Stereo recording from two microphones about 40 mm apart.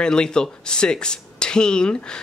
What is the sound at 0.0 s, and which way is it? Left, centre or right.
A man's voice, centre.